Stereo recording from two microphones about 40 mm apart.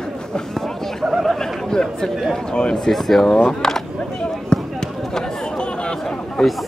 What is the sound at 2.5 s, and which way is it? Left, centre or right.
Speech, left.